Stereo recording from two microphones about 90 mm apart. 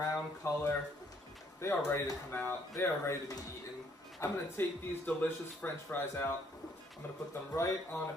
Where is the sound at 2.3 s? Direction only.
25° left (ahead or behind).